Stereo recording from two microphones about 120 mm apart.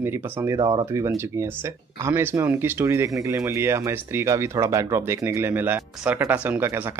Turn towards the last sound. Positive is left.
turn(degrees=-20)  # may be behind; listen again after turning